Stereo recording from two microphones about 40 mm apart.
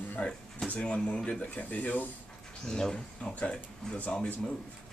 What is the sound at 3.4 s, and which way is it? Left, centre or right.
Speech, left.